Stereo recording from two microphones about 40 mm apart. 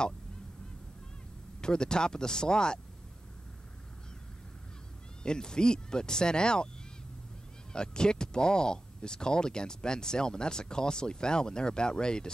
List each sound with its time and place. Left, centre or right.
1.6 s speech: centre
5.2 s speech: centre
7.7 s speech: left